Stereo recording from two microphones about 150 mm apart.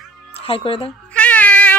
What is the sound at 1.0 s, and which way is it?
Cat, 10° left (ahead or behind).